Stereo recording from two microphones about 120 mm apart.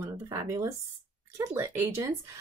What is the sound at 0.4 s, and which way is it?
Speech, 30° right (ahead or behind).